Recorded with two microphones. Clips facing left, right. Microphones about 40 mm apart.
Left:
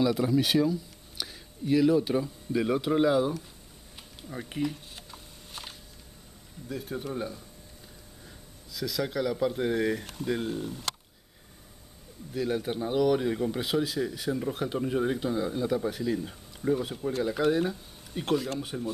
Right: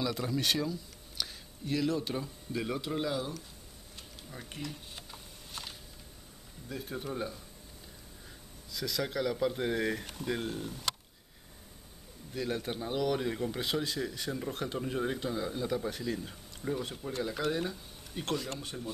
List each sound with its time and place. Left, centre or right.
0.0 s speech: centre
5.5 s a sound: centre
6.7 s speech: centre
8.7 s speech: centre
12.4 s speech: centre